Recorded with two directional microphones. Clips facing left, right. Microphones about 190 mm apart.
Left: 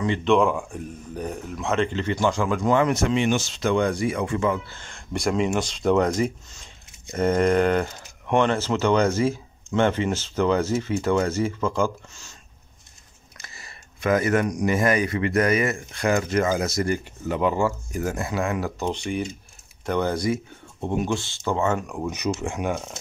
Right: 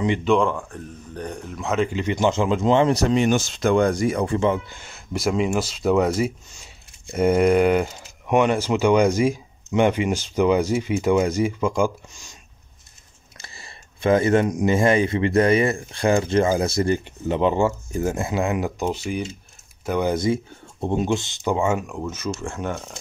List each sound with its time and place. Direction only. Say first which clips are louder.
0.2 s speech: even; 5° left (ahead or behind); by 4.6 s 30° right (ahead or behind)
4.6 s speech: right 1 dB; 10° right (ahead or behind)
13.4 s speech: right 2 dB; 30° right (ahead or behind)
18.9 s speech: right 1 dB; 5° right (ahead or behind)
20.8 s speech: right 3 dB; 25° right (ahead or behind); by 21.9 s 10° right (ahead or behind)
21.9 s speech: left 2 dB; 15° left (ahead or behind)